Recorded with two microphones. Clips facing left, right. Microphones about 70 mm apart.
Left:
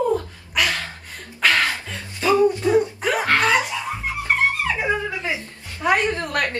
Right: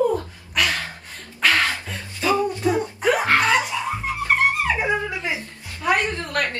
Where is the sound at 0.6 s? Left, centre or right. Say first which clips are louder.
Even; centre.